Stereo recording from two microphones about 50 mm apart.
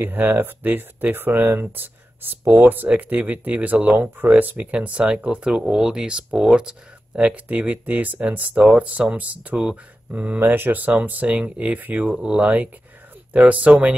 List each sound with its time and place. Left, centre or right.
0.0 s speech: right; by 6.2 s centre
6.3 s speech: centre
7.4 s speech: right
10.4 s speech: right